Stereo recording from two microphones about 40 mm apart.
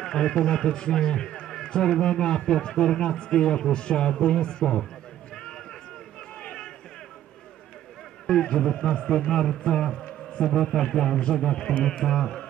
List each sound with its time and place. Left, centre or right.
0.0 s a man's voice: centre
5.3 s a sound: centre
8.3 s a man's voice: centre